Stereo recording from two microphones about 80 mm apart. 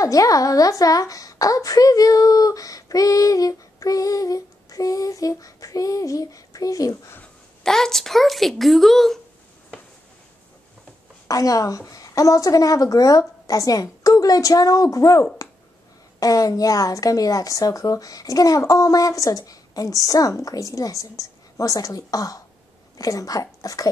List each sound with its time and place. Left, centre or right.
0.0 s a woman's voice: left
7.6 s speech: centre
11.2 s a woman's voice: left